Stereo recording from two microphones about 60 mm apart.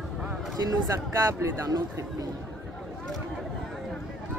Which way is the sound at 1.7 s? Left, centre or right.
Right.